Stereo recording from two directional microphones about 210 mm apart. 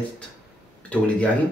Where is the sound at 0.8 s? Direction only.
5° left (ahead or behind).